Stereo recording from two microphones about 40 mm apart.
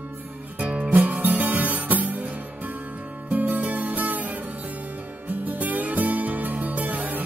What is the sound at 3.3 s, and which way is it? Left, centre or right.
Music, right.